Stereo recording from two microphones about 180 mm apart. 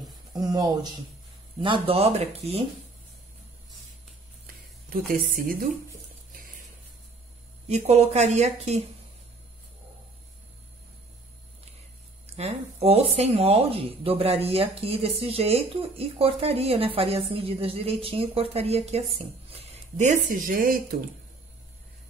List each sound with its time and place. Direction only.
0.3 s speech: 20° right (ahead or behind)
5.1 s a woman's voice: 55° right (ahead or behind)
7.6 s speech: 40° right (ahead or behind)
12.4 s speech: 35° right (ahead or behind); by 21.0 s 50° right (ahead or behind)